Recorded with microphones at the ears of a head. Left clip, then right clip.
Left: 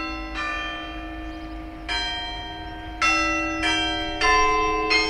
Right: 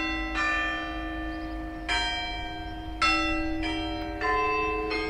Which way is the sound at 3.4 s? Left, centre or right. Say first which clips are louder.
Left 8 dB; left.